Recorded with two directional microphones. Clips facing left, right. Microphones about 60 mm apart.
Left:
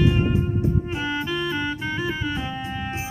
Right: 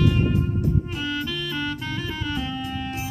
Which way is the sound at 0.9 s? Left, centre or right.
Left.